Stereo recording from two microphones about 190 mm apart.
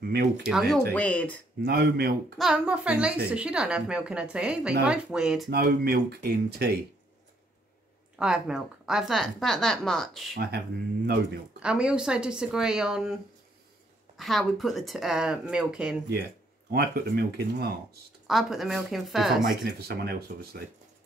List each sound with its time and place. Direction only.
0.4 s a woman's voice: 5° right (ahead or behind)
1.6 s speech: 60° right (ahead or behind)
2.3 s a woman's voice: 5° right (ahead or behind)
5.5 s speech: 55° right (ahead or behind)
8.2 s a woman's voice: 5° right (ahead or behind)
10.3 s speech: 55° right (ahead or behind)
11.6 s a woman's voice: 5° right (ahead or behind)
14.1 s a woman's voice: centre (ahead or behind)
16.7 s speech: 55° right (ahead or behind)
18.2 s a woman's voice: centre (ahead or behind)
20.0 s speech: 55° right (ahead or behind)